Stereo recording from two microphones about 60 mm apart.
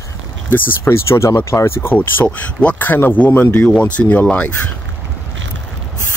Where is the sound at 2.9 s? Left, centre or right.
Left.